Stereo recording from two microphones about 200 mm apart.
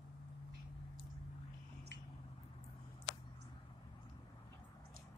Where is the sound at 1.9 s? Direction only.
60° right (ahead or behind).